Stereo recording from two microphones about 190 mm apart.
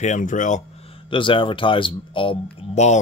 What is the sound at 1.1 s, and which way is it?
Speech, 25° left (ahead or behind).